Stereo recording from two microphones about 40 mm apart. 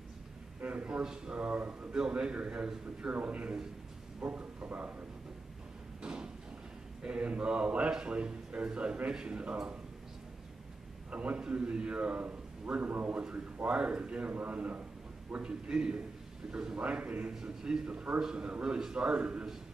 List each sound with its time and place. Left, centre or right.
0.6 s a sound: right
0.9 s a man's voice: centre
1.3 s speech: right
1.9 s a man's voice: right
3.1 s speech: right
7.0 s a man's voice: right
11.1 s a man's voice: right
13.7 s a man's voice: right
14.3 s speech: right
15.3 s a man's voice: right
17.3 s a man's voice: centre
17.8 s a man's voice: right